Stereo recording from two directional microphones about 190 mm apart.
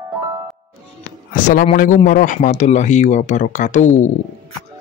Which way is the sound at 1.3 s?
45° left (ahead or behind).